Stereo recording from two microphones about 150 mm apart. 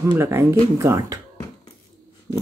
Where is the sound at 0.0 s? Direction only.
15° right (ahead or behind).